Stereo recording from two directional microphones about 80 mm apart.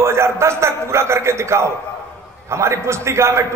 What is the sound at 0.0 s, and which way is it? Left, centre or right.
A man's voice, right.